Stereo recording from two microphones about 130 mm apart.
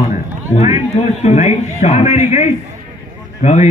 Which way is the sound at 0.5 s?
60° left (ahead or behind).